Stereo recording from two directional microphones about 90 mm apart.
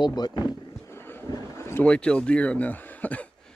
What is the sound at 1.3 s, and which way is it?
Boat, 30° left (ahead or behind).